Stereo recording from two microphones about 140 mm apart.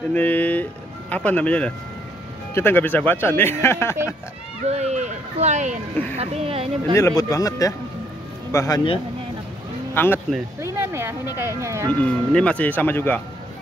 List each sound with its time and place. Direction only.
0.1 s speech: 10° left (ahead or behind)
4.6 s speech: 50° right (ahead or behind)
6.1 s speech: 45° right (ahead or behind)
7.0 s speech: 20° left (ahead or behind)
9.9 s speech: 15° left (ahead or behind)
10.6 s speech: 20° right (ahead or behind)
11.9 s speech: 10° left (ahead or behind)